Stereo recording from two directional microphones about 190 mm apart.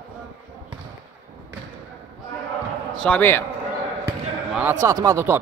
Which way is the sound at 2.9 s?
5° left (ahead or behind).